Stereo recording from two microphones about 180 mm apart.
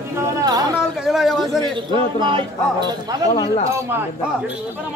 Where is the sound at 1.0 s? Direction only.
Centre (ahead or behind).